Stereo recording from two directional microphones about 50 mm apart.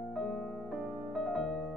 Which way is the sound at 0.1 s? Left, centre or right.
Centre.